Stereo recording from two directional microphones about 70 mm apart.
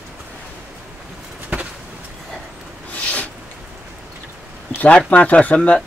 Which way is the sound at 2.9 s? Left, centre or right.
Left.